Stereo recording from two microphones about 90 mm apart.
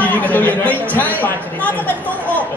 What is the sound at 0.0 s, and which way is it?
Speech, 20° left (ahead or behind).